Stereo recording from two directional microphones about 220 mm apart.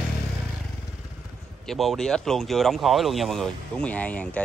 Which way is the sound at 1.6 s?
Centre (ahead or behind).